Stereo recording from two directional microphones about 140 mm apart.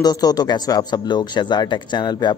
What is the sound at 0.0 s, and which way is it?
A man's voice, 30° left (ahead or behind).